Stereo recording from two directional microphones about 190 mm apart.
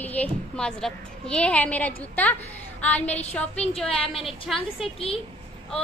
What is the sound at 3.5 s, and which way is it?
A woman's voice, 35° left (ahead or behind).